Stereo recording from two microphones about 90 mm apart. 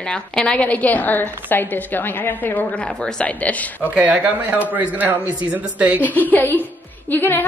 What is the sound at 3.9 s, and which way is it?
Speech, 15° right (ahead or behind).